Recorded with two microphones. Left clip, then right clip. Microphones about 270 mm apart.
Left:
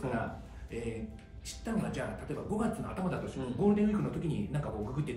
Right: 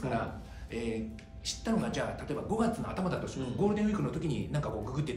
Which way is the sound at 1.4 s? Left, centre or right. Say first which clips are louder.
Right 4 dB; centre.